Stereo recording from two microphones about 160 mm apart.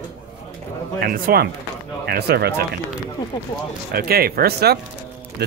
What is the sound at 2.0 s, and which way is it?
Speech, 90° right.